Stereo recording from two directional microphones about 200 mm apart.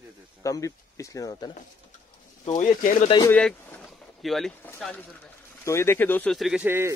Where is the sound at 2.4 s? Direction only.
40° left (ahead or behind).